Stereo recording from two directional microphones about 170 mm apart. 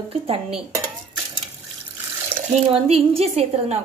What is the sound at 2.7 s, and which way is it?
Speech, 35° right (ahead or behind).